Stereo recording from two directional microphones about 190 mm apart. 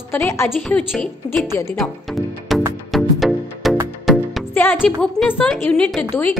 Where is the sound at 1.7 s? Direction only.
Centre (ahead or behind).